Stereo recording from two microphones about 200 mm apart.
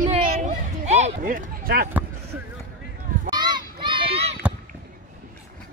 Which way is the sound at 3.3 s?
20° right (ahead or behind).